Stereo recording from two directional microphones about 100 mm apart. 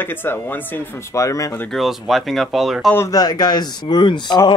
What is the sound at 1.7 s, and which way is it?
Speech, centre (ahead or behind).